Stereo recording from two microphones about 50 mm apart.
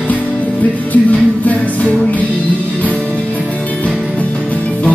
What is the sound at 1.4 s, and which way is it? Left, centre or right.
Music, left.